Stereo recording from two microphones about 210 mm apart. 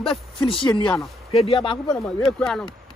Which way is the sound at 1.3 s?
25° left (ahead or behind).